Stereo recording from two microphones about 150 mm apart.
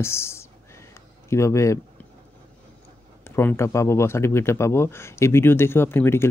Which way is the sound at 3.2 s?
15° left (ahead or behind).